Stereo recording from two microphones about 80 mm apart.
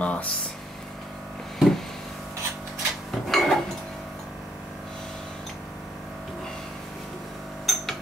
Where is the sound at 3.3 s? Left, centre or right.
Centre.